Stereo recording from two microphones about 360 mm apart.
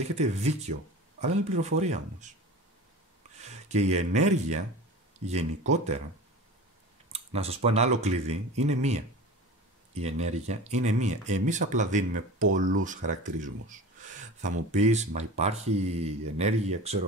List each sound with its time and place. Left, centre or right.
0.0 s speech: centre
3.3 s speech: centre
7.1 s speech: centre